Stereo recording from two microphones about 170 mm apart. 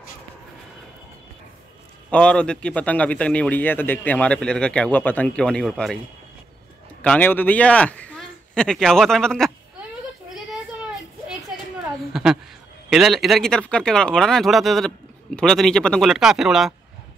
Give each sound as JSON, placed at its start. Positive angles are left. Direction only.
{"t": 2.0, "sound": "a man's voice", "side_deg": 5}
{"t": 7.0, "sound": "speech", "side_deg": 10}
{"t": 10.3, "sound": "a sound", "side_deg": -5}
{"t": 12.1, "sound": "speech", "side_deg": -5}